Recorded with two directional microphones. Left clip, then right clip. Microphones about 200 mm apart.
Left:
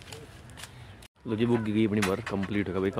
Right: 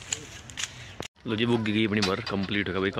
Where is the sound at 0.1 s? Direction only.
35° left (ahead or behind).